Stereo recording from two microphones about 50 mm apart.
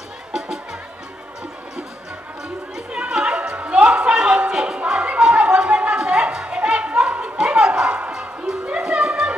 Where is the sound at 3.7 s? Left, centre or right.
Centre.